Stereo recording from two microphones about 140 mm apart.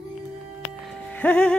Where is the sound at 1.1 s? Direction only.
10° left (ahead or behind).